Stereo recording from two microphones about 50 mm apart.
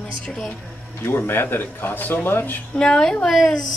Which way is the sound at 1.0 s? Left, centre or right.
Left.